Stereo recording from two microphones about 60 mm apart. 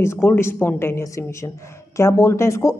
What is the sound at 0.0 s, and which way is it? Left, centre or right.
A woman's voice, left.